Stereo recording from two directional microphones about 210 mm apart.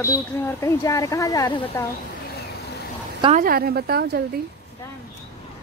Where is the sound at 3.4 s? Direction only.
45° right (ahead or behind).